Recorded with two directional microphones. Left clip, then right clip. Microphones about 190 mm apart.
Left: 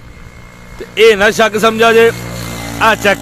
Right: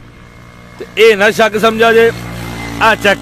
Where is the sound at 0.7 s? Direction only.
Centre (ahead or behind).